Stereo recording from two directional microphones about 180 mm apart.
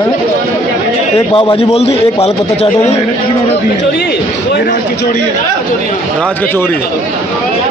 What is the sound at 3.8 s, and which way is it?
Speech, 65° left (ahead or behind).